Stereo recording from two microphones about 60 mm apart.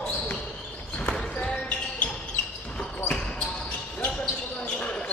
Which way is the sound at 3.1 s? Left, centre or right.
Centre.